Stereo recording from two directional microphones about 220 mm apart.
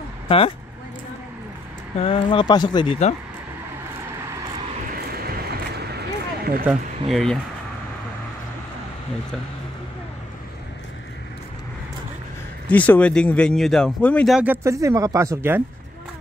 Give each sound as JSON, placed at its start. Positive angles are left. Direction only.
{"t": 2.0, "sound": "speech", "side_deg": 25}
{"t": 4.7, "sound": "vehicle", "side_deg": -45}
{"t": 6.6, "sound": "speech", "side_deg": 0}
{"t": 12.6, "sound": "speech", "side_deg": 5}